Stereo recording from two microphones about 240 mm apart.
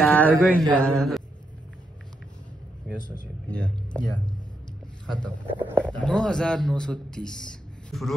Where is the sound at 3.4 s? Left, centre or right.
Centre.